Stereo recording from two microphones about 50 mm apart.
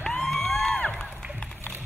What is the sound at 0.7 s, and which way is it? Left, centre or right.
Music, left.